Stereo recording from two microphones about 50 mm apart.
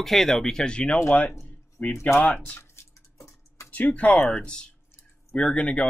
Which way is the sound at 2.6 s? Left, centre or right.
Left.